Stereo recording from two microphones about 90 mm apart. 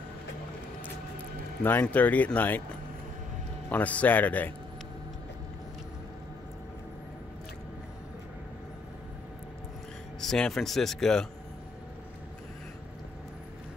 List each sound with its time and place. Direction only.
1.6 s speech: 20° left (ahead or behind)
3.7 s speech: 15° left (ahead or behind)
10.2 s speech: 5° left (ahead or behind)